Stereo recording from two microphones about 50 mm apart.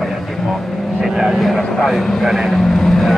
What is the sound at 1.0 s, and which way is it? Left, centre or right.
Vehicle, centre.